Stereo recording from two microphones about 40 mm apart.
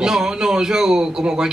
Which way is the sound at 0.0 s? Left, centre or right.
Centre.